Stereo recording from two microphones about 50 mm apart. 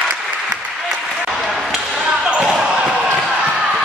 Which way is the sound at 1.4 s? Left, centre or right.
Centre.